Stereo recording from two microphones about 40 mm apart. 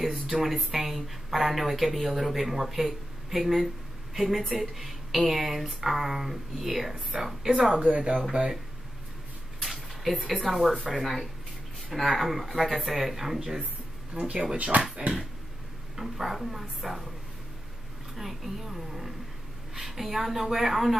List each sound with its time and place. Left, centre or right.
0.0 s speech: centre
9.6 s a sound: centre
10.9 s speech: centre
14.1 s speech: right
16.0 s speech: centre
18.1 s a woman's voice: centre